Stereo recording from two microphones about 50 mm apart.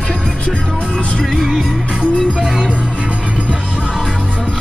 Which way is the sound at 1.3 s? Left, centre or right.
Centre.